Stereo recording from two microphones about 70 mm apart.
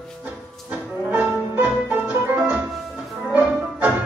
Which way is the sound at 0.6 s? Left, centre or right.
Right.